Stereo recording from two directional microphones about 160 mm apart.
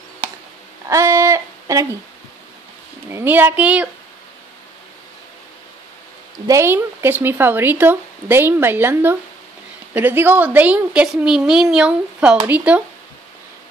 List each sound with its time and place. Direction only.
0.8 s a sound: 20° right (ahead or behind)
3.1 s speech: 15° right (ahead or behind)
6.4 s speech: 15° right (ahead or behind)